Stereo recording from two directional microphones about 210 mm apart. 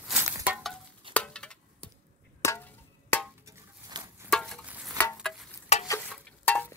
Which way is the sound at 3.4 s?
20° right (ahead or behind).